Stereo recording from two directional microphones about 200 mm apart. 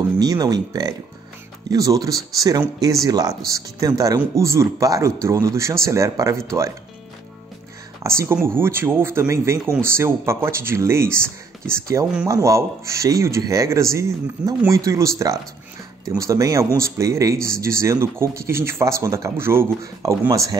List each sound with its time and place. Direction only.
0.2 s speech: 20° right (ahead or behind)
8.0 s speech: 15° right (ahead or behind)